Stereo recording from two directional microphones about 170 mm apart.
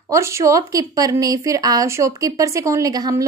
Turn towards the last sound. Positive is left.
turn(degrees=-20)  # may be behind; listen again after turning